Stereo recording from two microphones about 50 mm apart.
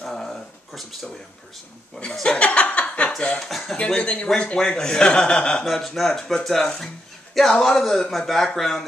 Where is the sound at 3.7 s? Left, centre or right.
Left.